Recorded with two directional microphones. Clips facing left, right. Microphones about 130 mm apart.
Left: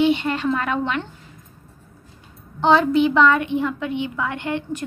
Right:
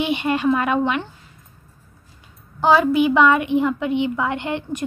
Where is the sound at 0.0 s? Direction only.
15° right (ahead or behind).